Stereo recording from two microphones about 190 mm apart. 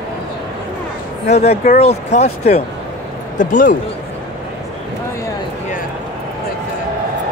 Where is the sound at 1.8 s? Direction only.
35° left (ahead or behind).